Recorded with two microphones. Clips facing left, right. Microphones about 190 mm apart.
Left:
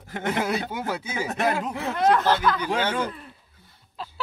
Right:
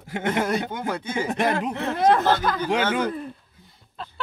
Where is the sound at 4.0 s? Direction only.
Centre (ahead or behind).